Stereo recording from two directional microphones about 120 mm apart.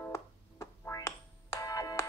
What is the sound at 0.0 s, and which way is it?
Music, 20° left (ahead or behind).